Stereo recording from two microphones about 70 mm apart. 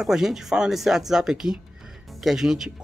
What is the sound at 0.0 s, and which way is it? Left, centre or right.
Speech, centre.